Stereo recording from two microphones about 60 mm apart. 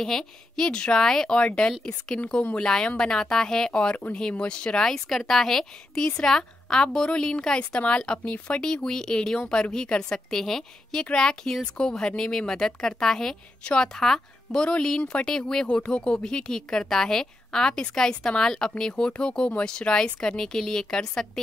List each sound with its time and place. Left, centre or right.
0.0 s a woman's voice: centre; by 2.6 s left
2.6 s a woman's voice: centre